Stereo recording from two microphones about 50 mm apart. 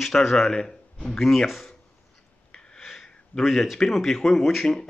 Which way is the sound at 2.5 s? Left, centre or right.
Centre.